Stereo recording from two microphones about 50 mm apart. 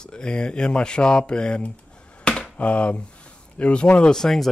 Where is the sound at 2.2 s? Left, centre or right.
Left.